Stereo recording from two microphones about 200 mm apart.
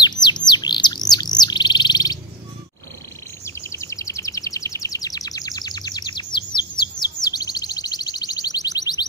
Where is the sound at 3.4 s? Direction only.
15° left (ahead or behind).